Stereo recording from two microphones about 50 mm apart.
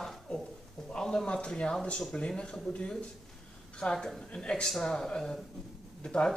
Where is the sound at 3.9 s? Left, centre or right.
Centre.